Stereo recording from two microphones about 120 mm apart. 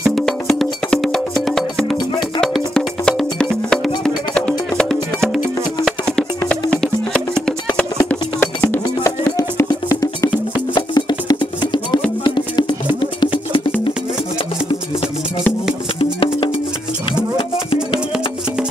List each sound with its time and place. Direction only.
0.1 s music: centre (ahead or behind); by 12.7 s 40° left (ahead or behind)
16.0 s music: 50° left (ahead or behind)